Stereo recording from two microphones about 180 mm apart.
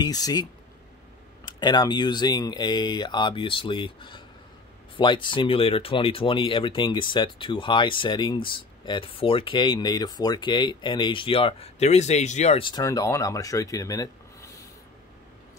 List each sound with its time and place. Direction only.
0.0 s speech: 20° left (ahead or behind)